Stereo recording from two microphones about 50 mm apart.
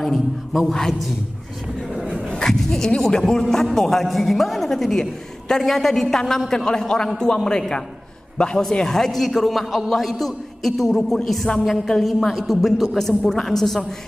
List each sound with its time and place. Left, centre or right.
0.0 s a woman's voice: centre
2.2 s goat: centre
2.6 s a man's voice: centre
8.6 s a woman's voice: centre